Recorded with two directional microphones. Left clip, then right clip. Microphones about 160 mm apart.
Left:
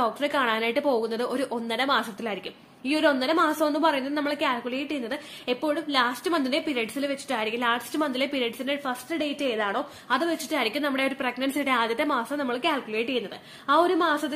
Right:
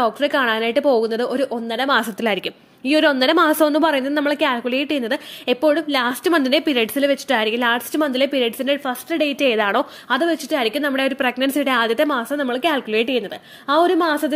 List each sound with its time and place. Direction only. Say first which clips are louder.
0.0 s a woman's voice: right 7 dB; 35° right (ahead or behind)
2.0 s a woman's voice: right 9 dB; 50° right (ahead or behind)